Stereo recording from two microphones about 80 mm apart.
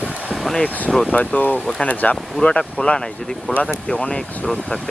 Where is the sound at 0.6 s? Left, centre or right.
Centre.